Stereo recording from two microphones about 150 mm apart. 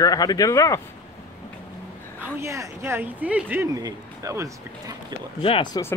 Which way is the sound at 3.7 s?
20° right (ahead or behind).